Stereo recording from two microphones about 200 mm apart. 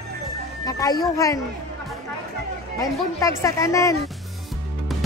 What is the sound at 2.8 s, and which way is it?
Speech, 15° left (ahead or behind).